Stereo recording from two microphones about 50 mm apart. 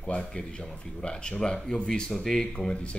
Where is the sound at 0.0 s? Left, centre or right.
Centre.